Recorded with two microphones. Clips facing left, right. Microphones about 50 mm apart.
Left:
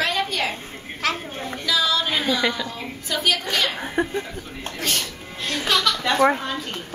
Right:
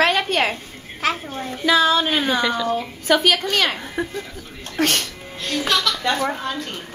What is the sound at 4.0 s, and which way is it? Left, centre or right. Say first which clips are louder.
Speech: left 4 dB; left.